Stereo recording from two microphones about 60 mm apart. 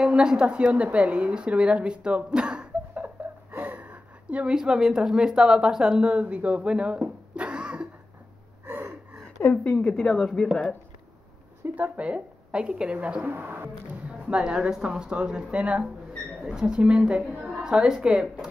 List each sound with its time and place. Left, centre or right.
0.0 s a woman's voice: centre
7.0 s a sound: right
8.6 s gasp: right
9.4 s a woman's voice: left
9.8 s speech: centre
11.7 s a woman's voice: right
13.3 s speech: right
14.0 s a woman's voice: centre